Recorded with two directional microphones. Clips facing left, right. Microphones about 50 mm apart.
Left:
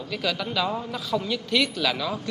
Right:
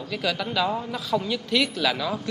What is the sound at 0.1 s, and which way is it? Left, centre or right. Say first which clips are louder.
Speech: right 1 dB; centre.